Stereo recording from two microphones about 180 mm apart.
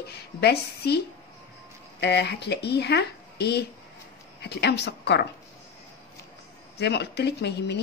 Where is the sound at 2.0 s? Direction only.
70° left (ahead or behind).